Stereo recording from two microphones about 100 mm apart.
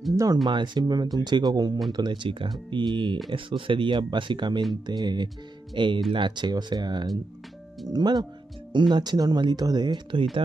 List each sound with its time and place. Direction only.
0.1 s speech: 35° right (ahead or behind)
0.5 s speech: 45° right (ahead or behind)